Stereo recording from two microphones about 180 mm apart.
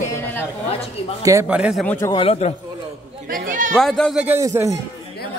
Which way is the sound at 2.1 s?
35° left (ahead or behind).